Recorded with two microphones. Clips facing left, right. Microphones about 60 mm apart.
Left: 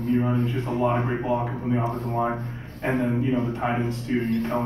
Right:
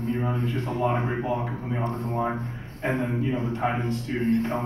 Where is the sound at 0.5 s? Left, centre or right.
Centre.